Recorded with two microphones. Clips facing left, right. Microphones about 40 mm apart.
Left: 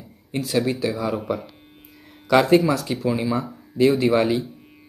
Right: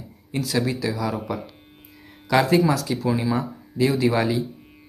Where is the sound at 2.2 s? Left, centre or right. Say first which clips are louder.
Left 2 dB; left.